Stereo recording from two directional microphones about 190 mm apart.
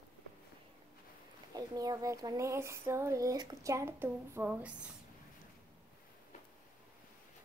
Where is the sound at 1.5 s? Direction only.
20° right (ahead or behind).